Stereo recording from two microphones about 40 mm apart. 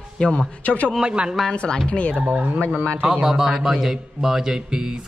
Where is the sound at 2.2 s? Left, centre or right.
Centre.